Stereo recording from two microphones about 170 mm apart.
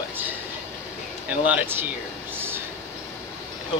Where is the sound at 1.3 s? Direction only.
10° right (ahead or behind).